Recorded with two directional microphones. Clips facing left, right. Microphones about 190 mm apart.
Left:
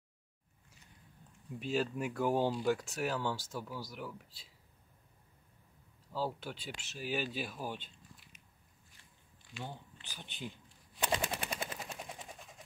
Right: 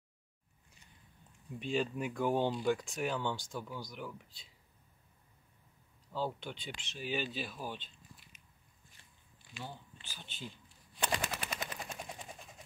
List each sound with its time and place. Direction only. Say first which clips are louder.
1.6 s speech: even; 5° left (ahead or behind)
6.1 s speech: even; 5° left (ahead or behind)
10.0 s speech: left 3 dB; 15° left (ahead or behind)
11.1 s machine gun: left 2 dB; 30° left (ahead or behind)
11.5 s vehicle: left 1 dB; 30° left (ahead or behind)
11.8 s vehicle: right 1 dB; centre (ahead or behind)